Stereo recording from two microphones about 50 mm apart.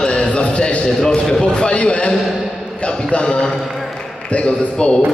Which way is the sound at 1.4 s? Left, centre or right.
Left.